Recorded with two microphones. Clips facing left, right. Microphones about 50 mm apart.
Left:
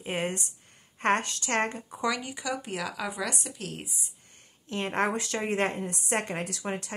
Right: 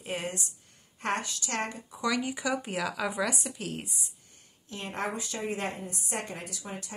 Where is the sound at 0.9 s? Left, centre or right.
Left.